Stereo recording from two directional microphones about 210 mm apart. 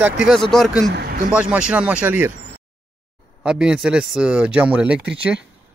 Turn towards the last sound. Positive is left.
turn(degrees=-5)  # may be behind; listen again after turning